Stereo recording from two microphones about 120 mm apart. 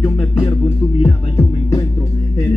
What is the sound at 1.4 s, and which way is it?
Music, 30° left (ahead or behind).